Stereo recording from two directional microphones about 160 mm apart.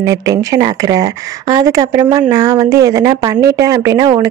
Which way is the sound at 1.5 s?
25° right (ahead or behind).